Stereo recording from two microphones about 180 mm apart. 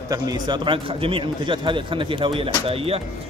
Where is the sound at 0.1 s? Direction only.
25° right (ahead or behind).